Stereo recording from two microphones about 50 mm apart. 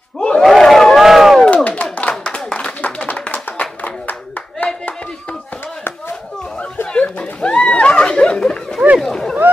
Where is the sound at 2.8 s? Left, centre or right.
Left.